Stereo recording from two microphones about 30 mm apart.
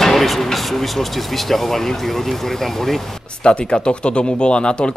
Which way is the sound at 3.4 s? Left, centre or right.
Left.